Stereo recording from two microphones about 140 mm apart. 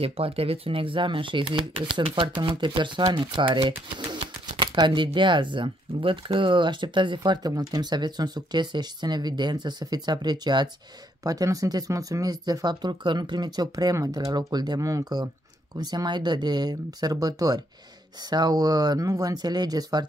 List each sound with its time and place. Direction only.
0.0 s speech: 45° right (ahead or behind); by 20.1 s 30° right (ahead or behind)